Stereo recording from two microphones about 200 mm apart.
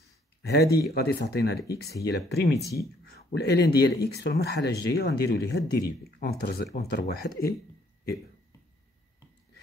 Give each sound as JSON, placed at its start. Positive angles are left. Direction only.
{"t": 0.5, "sound": "speech", "side_deg": 55}